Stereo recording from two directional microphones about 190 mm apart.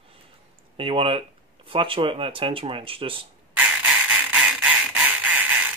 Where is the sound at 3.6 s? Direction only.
5° right (ahead or behind).